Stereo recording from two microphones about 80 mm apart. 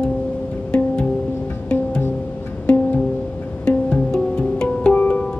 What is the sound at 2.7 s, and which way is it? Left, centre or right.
Music, centre.